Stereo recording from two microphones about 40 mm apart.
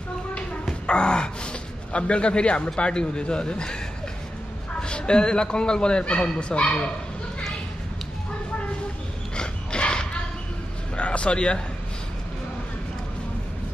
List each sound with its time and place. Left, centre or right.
0.8 s gasp: left
2.8 s a man's voice: left
4.8 s a man's voice: left
9.4 s dog: left
11.0 s speech: left